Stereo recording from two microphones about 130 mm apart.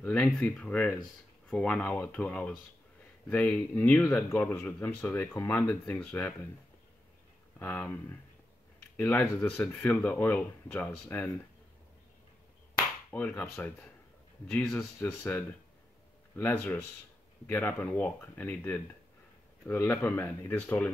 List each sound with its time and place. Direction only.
0.0 s speech: 10° left (ahead or behind)
7.5 s speech: 15° left (ahead or behind)
13.1 s speech: 10° left (ahead or behind)